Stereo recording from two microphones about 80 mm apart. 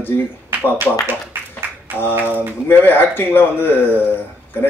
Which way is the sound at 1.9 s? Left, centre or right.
Left.